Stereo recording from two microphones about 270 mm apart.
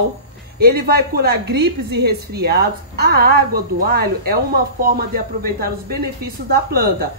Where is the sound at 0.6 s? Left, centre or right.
Right.